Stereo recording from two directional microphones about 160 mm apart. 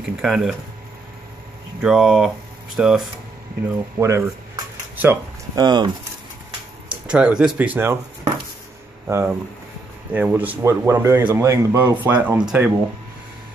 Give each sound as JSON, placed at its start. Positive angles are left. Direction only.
{"t": 0.0, "sound": "speech", "side_deg": 0}
{"t": 1.8, "sound": "speech", "side_deg": -5}
{"t": 3.6, "sound": "speech", "side_deg": -20}
{"t": 4.9, "sound": "a sound", "side_deg": -15}
{"t": 5.6, "sound": "speech", "side_deg": -25}
{"t": 7.1, "sound": "a man's voice", "side_deg": -5}